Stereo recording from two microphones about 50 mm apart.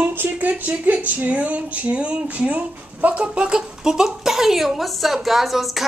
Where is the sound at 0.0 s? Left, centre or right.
Right.